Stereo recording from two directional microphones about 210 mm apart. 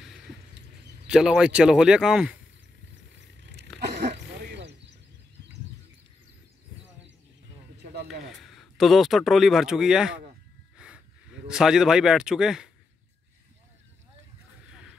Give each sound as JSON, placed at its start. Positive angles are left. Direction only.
{"t": 1.0, "sound": "speech", "side_deg": -5}
{"t": 4.0, "sound": "wild animals", "side_deg": -55}
{"t": 7.7, "sound": "a sound", "side_deg": -50}
{"t": 8.3, "sound": "speech", "side_deg": 0}
{"t": 10.8, "sound": "a sound", "side_deg": -5}
{"t": 11.4, "sound": "speech", "side_deg": -5}